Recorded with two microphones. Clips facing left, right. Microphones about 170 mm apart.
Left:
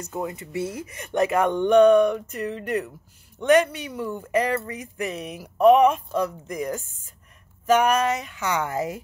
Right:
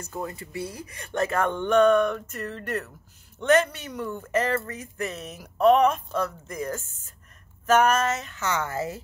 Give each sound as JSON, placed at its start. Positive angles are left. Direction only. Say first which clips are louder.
{"t": 0.0, "sound": "speech", "louder": "left 3 dB", "side_deg": 20}